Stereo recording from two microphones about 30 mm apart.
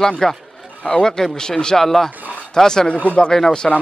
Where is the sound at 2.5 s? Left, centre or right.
Left.